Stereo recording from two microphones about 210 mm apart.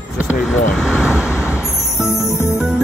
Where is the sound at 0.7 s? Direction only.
Centre (ahead or behind).